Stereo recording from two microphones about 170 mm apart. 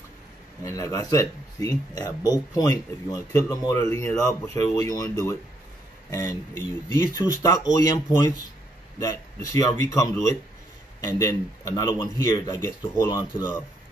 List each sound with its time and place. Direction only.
0.7 s speech: 20° left (ahead or behind)